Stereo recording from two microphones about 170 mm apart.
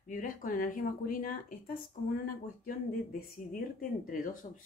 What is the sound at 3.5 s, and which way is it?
Speech, 50° left (ahead or behind).